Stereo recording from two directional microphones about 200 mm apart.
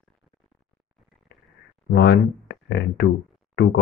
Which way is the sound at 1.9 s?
55° left (ahead or behind).